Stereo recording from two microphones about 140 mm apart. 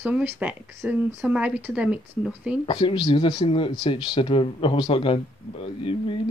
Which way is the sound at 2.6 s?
40° left (ahead or behind).